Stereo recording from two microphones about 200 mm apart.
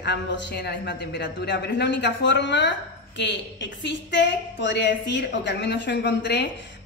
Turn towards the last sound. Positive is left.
turn(degrees=60)  # may be behind; listen again after turning